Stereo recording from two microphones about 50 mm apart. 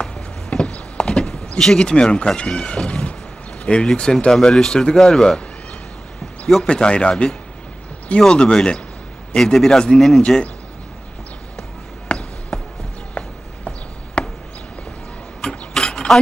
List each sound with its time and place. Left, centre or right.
0.0 s a sound: centre
1.6 s speech: centre
6.4 s speech: centre
8.4 s speech: centre
12.1 s basketball bounce: left
14.2 s chop: centre
15.4 s rub: centre